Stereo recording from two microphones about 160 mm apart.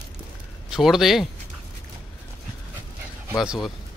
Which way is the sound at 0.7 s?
Centre (ahead or behind).